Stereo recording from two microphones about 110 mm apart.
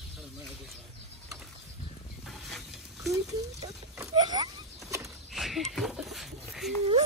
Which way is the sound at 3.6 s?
35° right (ahead or behind).